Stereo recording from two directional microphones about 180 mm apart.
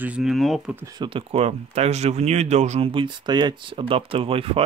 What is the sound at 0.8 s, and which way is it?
Speech, 25° right (ahead or behind).